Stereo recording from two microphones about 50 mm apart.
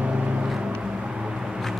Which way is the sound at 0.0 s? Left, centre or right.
Right.